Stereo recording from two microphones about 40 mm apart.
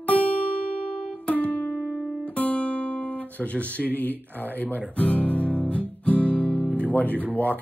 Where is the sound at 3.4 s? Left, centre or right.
Left.